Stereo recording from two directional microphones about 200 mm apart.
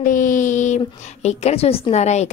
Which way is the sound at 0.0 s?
40° left (ahead or behind).